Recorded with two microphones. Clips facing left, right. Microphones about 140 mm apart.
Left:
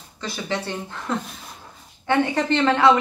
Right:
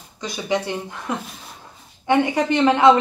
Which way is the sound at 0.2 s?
15° right (ahead or behind).